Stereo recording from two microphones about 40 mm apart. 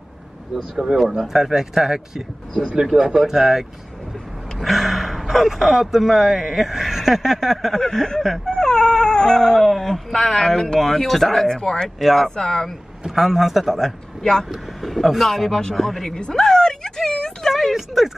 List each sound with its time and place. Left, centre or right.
1.1 s speech: centre
3.0 s speech: right
3.3 s speech: centre
7.8 s speech: centre
8.5 s dog: centre
9.6 s speech: centre
11.4 s speech: centre
12.0 s speech: centre
12.4 s speech: centre
13.0 s speech: centre
16.1 s a sound: centre
17.5 s a sound: centre
17.7 s speech: centre